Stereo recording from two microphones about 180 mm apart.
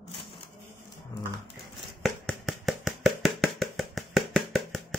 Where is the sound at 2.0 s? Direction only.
Centre (ahead or behind).